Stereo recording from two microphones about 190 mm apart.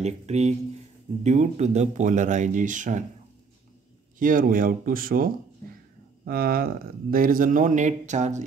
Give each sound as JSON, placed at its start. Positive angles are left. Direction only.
{"t": 0.0, "sound": "speech", "side_deg": -35}
{"t": 4.2, "sound": "speech", "side_deg": -45}